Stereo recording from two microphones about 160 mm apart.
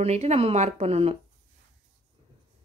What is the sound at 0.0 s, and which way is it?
Speech, 40° right (ahead or behind).